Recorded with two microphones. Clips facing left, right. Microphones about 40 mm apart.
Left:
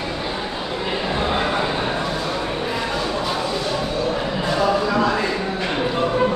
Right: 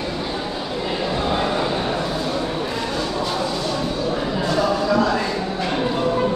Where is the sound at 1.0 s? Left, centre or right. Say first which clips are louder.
Even; left.